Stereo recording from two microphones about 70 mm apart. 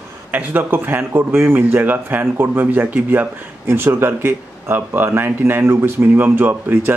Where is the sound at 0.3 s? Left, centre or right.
Right.